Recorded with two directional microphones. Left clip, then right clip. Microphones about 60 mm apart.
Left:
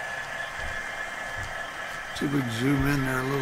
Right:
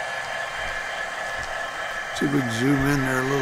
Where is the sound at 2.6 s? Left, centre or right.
Centre.